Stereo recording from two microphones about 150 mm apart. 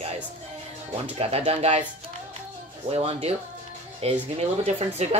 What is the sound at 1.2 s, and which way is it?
Speech, 40° right (ahead or behind).